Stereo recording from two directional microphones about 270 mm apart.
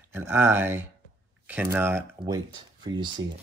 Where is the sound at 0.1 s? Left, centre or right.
Centre.